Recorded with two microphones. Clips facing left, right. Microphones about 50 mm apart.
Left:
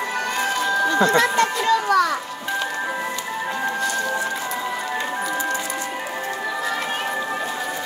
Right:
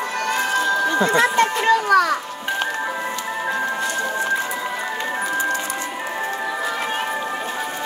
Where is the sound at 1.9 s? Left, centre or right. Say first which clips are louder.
Right 3 dB; centre.